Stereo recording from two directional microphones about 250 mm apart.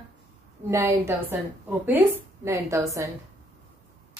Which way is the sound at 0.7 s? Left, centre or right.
Centre.